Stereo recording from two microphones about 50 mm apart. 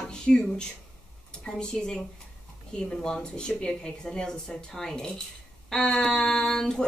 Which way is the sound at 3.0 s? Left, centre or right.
Centre.